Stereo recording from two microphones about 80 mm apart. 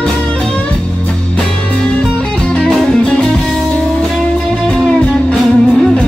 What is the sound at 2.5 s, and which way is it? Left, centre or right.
Music, centre.